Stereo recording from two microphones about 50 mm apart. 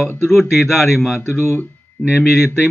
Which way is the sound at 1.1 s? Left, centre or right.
Left.